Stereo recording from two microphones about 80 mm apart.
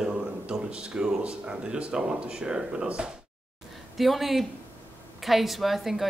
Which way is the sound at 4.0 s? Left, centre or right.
Centre.